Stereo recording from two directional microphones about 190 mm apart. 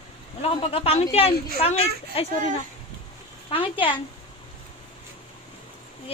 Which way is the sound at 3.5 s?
25° left (ahead or behind).